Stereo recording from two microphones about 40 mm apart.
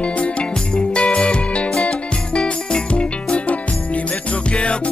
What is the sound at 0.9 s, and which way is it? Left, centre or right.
Music, left.